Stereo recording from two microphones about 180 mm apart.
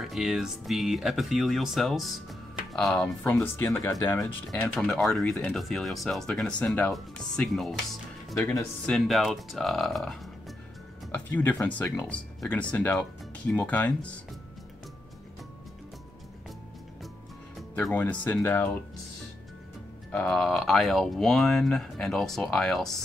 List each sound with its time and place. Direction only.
0.0 s speech: centre (ahead or behind)
3.6 s speech: 15° left (ahead or behind)
8.4 s speech: 15° left (ahead or behind)
8.8 s speech: centre (ahead or behind)
17.7 s speech: 10° left (ahead or behind)
20.1 s speech: 5° left (ahead or behind)